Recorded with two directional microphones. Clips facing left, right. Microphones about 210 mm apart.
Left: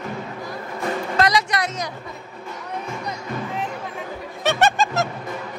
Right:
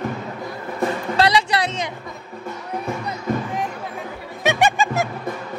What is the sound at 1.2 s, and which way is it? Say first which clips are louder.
Music: right 2 dB; 30° right (ahead or behind).